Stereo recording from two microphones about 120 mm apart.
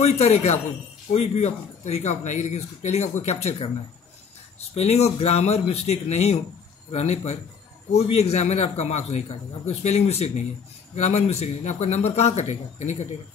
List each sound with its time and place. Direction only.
0.0 s speech: 65° left (ahead or behind)